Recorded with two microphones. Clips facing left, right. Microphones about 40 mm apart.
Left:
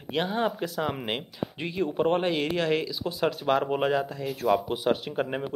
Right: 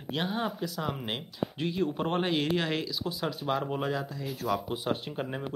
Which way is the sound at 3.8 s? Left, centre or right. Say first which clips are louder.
Left 6 dB; left.